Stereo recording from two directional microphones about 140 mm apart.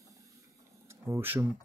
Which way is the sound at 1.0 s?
15° right (ahead or behind).